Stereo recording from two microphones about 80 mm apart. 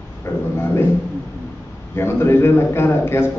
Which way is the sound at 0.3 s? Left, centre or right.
Left.